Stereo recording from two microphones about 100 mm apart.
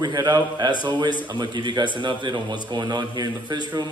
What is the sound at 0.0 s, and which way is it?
A man's voice, 40° right (ahead or behind).